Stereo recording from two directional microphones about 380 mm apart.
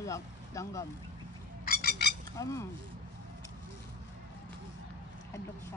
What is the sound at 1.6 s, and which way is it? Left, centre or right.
Squawk, left.